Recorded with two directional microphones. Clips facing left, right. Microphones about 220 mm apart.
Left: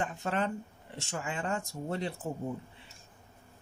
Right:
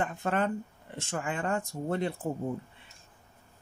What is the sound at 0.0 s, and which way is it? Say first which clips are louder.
Speech: right 3 dB; 55° right (ahead or behind).